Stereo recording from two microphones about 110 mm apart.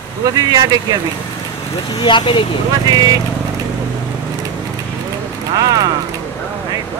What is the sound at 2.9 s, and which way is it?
Speech, 35° right (ahead or behind).